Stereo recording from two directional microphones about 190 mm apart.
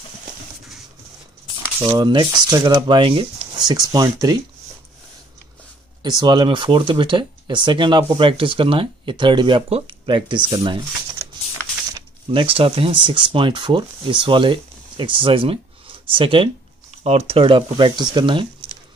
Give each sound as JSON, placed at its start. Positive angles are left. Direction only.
{"t": 1.8, "sound": "speech", "side_deg": -25}
{"t": 6.0, "sound": "speech", "side_deg": -20}
{"t": 11.9, "sound": "speech", "side_deg": -25}